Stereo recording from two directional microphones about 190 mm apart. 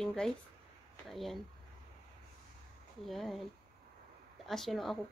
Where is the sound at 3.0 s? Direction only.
Centre (ahead or behind).